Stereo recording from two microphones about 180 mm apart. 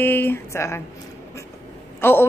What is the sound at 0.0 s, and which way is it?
Speech, 10° left (ahead or behind).